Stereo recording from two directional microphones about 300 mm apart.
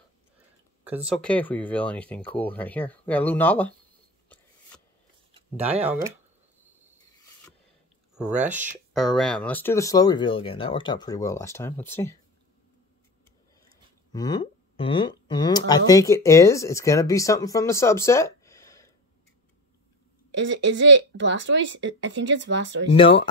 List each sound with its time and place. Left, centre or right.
0.8 s speech: centre
5.6 s speech: centre
8.1 s speech: centre
14.1 s speech: centre
20.3 s speech: right
22.9 s speech: centre